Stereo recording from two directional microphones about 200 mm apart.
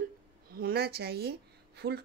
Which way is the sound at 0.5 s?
50° right (ahead or behind).